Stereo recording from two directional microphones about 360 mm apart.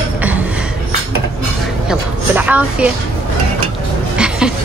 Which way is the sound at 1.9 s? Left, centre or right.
Centre.